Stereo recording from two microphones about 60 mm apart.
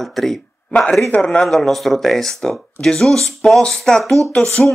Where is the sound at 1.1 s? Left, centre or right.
Centre.